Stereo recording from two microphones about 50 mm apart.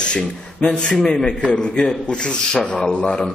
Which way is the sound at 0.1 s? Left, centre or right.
Centre.